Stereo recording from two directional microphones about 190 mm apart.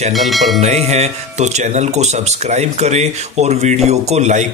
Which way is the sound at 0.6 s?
35° right (ahead or behind).